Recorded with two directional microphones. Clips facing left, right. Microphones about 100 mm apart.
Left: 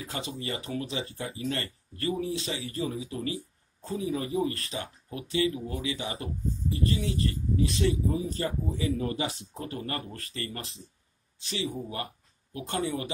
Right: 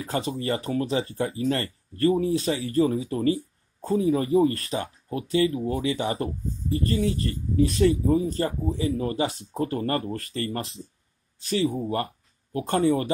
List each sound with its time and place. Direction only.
0.0 s speech: 40° right (ahead or behind)
11.3 s speech: 45° right (ahead or behind)